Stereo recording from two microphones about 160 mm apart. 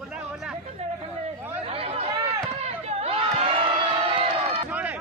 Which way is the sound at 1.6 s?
40° right (ahead or behind).